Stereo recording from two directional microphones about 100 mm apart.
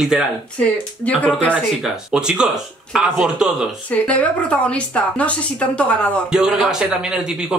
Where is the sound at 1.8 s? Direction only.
5° right (ahead or behind).